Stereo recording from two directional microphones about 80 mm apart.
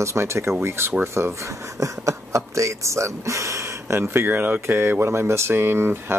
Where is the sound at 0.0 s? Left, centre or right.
Right.